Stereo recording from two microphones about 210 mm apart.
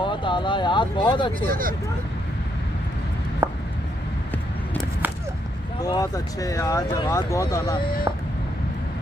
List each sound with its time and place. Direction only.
0.0 s speech: 20° left (ahead or behind)
1.5 s speech: 40° right (ahead or behind)
3.4 s a sound: 10° right (ahead or behind)
5.9 s speech: 15° left (ahead or behind)